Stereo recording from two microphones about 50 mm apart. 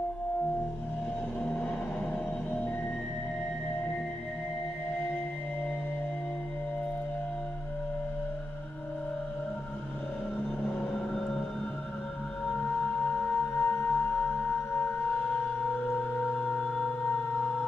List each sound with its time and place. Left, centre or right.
10.8 s vehicle: centre
12.5 s music: left
16.3 s music: left
17.0 s music: left